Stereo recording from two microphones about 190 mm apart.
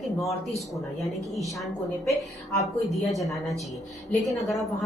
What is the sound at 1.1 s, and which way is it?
Speech, 15° right (ahead or behind).